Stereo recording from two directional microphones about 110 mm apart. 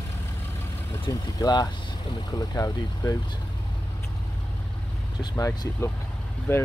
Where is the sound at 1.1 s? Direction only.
35° left (ahead or behind).